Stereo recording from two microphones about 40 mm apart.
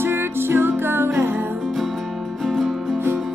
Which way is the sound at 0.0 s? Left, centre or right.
Right.